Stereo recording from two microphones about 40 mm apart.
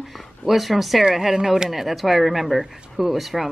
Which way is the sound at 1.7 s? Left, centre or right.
Centre.